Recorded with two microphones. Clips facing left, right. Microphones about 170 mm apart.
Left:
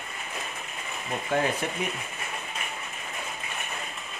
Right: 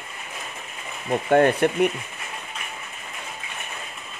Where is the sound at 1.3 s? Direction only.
65° right (ahead or behind).